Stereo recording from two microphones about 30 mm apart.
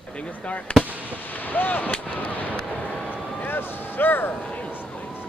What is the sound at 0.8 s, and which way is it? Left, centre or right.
Speech, right.